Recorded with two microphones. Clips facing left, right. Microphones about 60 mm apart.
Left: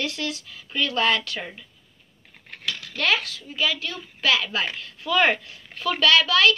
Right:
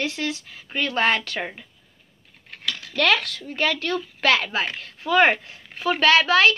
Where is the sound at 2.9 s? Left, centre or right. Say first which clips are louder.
Right 3 dB; right.